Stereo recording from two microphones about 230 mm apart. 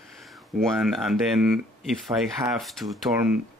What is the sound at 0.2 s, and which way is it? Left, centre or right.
Speech, centre.